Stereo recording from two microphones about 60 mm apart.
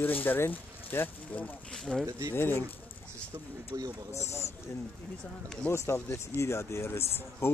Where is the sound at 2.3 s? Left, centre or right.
Left.